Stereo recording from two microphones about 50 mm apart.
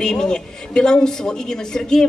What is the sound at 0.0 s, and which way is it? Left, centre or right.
A woman's voice, centre.